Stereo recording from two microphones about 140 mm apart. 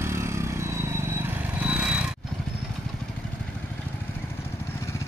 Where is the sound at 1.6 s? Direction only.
10° right (ahead or behind).